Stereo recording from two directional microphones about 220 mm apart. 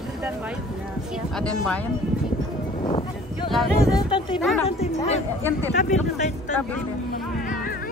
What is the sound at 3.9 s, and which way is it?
A woman's voice, 20° left (ahead or behind).